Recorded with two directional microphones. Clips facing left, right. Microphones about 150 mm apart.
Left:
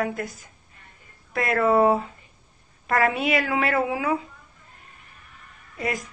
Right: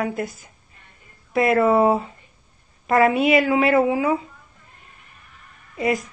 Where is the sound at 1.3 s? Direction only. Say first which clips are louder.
Right 3 dB; 15° right (ahead or behind).